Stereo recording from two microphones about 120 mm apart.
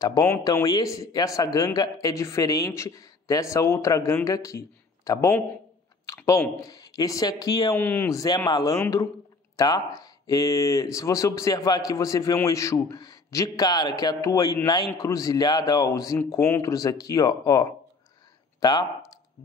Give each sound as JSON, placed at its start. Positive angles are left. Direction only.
{"t": 0.0, "sound": "a man's voice", "side_deg": 25}
{"t": 7.8, "sound": "a man's voice", "side_deg": 20}